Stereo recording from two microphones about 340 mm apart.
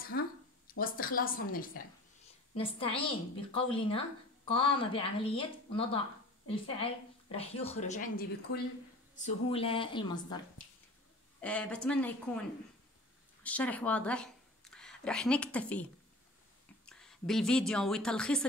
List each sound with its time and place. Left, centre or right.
0.1 s a sound: left
0.7 s a woman's voice: left
11.4 s speech: centre
13.4 s speech: centre